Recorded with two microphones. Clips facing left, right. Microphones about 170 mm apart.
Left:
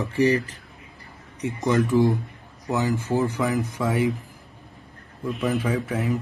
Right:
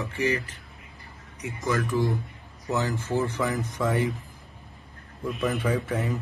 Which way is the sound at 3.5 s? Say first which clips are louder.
Left 2 dB; centre (ahead or behind).